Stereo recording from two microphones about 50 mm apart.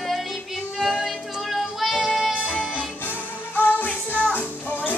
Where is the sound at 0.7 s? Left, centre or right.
Centre.